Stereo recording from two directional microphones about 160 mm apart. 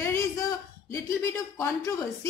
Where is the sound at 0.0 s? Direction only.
15° left (ahead or behind).